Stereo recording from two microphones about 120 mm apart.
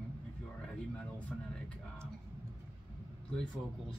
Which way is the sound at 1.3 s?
10° left (ahead or behind).